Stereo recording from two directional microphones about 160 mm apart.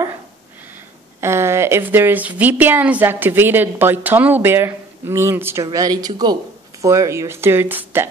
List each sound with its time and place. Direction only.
1.2 s a woman's voice: 15° right (ahead or behind)